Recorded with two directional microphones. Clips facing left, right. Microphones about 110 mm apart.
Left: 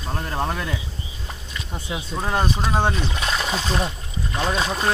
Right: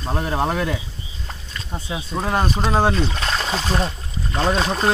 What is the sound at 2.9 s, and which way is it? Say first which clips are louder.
Speech: right 2 dB; 10° left (ahead or behind).